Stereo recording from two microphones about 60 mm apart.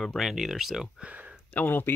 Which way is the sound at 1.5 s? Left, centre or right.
Left.